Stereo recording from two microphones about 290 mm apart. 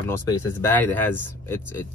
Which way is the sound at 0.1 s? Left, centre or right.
Centre.